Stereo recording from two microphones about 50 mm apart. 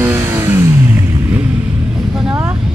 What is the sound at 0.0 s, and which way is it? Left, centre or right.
Vehicle, right.